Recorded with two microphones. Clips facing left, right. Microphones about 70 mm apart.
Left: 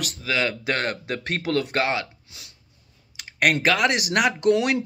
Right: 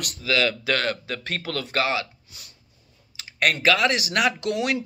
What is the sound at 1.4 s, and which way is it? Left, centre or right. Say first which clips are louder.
Speech: left 2 dB; left.